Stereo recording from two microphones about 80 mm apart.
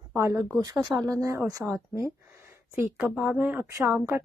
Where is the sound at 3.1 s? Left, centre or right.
Centre.